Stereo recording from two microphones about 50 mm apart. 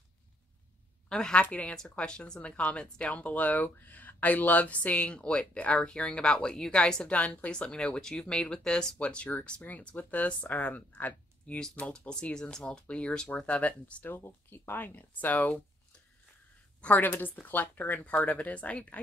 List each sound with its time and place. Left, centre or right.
1.0 s a woman's voice: centre
9.7 s speech: left
11.6 s speech: centre
13.4 s speech: left
14.0 s speech: left
16.8 s speech: left